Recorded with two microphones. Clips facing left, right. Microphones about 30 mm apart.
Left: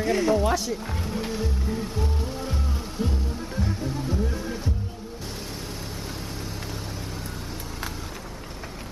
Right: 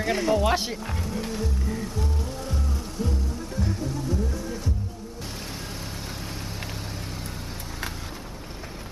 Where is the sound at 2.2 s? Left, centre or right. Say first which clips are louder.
Left 1 dB; left.